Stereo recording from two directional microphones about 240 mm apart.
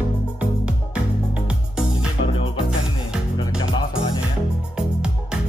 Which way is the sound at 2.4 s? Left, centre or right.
Left.